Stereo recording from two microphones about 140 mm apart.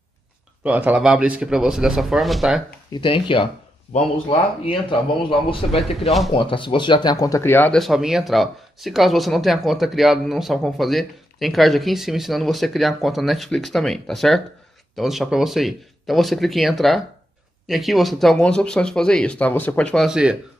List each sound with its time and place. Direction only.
0.7 s speech: 10° right (ahead or behind)
2.9 s speech: 35° left (ahead or behind); by 7.8 s 15° left (ahead or behind)
7.8 s speech: 5° right (ahead or behind)
20.1 s speech: 5° right (ahead or behind)